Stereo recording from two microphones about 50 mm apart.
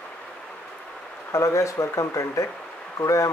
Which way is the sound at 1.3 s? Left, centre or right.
Left.